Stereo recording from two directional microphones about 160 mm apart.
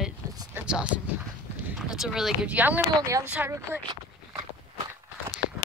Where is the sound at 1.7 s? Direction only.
5° right (ahead or behind).